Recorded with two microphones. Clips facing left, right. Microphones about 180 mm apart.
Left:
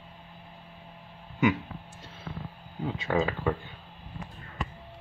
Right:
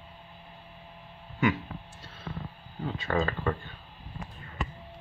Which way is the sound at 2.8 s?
10° left (ahead or behind).